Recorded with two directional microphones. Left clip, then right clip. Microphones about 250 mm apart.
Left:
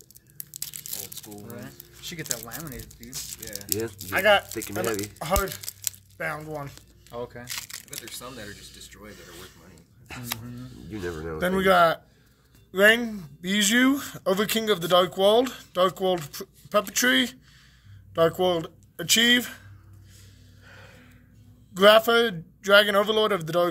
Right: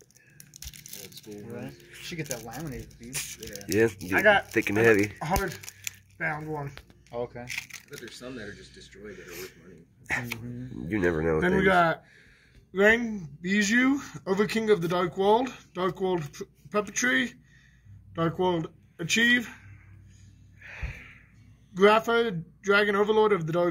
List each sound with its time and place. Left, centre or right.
0.5 s crushing: left
2.3 s speech: centre
3.8 s speech: right
4.1 s speech: left
4.6 s speech: right
6.1 s speech: left
7.1 s speech: centre
8.1 s speech: left
10.9 s speech: right
11.3 s speech: left
20.6 s a sound: right
21.7 s speech: left